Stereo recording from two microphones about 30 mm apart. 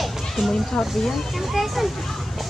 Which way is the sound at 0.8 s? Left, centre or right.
Left.